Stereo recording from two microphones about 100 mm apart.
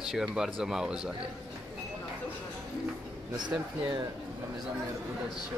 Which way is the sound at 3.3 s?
50° right (ahead or behind).